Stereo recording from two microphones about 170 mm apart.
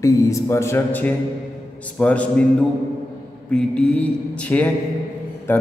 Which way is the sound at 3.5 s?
5° left (ahead or behind).